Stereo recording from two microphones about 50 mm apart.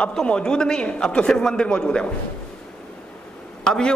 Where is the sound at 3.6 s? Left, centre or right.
Centre.